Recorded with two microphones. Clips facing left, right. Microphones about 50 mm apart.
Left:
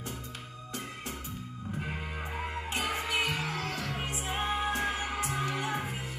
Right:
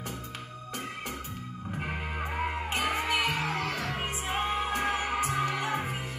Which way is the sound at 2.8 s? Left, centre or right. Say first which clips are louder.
Right 3 dB; right.